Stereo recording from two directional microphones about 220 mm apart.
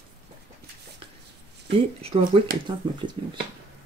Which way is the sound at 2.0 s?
25° right (ahead or behind).